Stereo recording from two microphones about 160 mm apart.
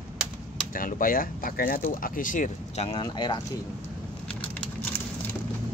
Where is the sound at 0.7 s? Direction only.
60° left (ahead or behind); by 3.0 s 40° left (ahead or behind).